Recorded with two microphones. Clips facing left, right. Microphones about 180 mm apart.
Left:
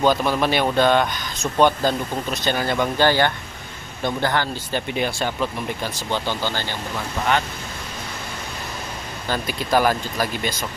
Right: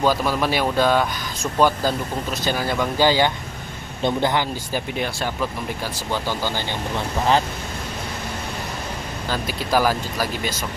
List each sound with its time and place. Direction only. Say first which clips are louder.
0.0 s speech: left 1 dB; 5° right (ahead or behind)
4.7 s speech: left 2 dB; centre (ahead or behind)
9.3 s speech: left 1 dB; 5° right (ahead or behind)